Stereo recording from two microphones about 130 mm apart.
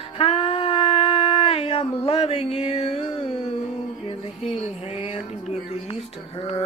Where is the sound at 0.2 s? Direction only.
45° left (ahead or behind).